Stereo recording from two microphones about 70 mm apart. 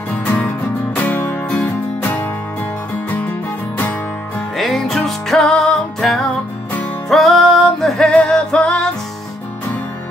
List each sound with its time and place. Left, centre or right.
0.2 s music: left
4.6 s music: centre